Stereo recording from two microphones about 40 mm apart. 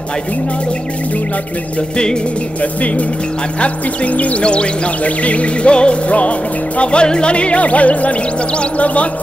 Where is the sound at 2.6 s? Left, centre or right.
Left.